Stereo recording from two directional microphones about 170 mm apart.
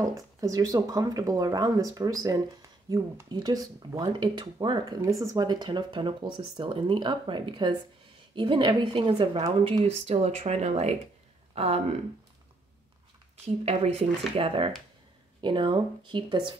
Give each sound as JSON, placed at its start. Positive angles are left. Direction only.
{"t": 0.0, "sound": "speech", "side_deg": -20}
{"t": 9.8, "sound": "speech", "side_deg": -40}
{"t": 13.7, "sound": "speech", "side_deg": -35}